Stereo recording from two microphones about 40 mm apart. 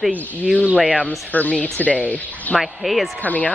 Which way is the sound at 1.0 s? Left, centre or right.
Left.